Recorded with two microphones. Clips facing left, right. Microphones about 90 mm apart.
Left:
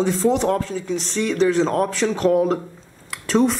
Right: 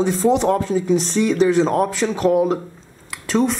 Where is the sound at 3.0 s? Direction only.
Centre (ahead or behind).